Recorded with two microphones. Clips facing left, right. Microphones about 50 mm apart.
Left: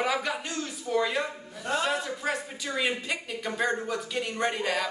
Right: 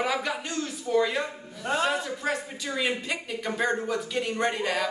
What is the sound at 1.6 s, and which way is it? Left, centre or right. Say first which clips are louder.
Speech: right 2 dB; centre.